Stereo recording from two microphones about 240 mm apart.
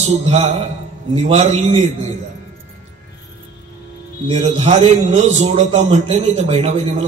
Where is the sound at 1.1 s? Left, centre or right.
Right.